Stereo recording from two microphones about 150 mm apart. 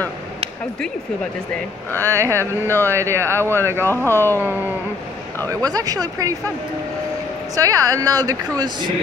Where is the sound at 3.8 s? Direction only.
15° left (ahead or behind).